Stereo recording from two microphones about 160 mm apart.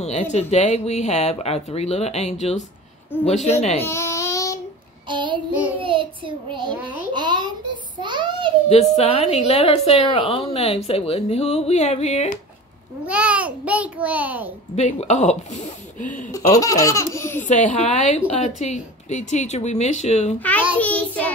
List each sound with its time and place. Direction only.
0.0 s speech: 40° left (ahead or behind)
3.1 s child singing: 10° left (ahead or behind)
3.4 s speech: 40° left (ahead or behind)
3.8 s baby cry: 15° left (ahead or behind)
5.0 s child singing: 30° right (ahead or behind)
7.2 s a sound: 30° right (ahead or behind)
8.6 s a woman's voice: 40° left (ahead or behind)
13.0 s a child's voice: 10° right (ahead or behind)
14.8 s speech: 45° left (ahead or behind)
16.3 s speech: 20° left (ahead or behind)
17.5 s speech: 45° left (ahead or behind)
20.3 s child singing: 10° left (ahead or behind)